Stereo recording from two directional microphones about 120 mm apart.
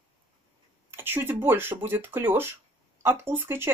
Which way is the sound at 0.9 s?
20° right (ahead or behind).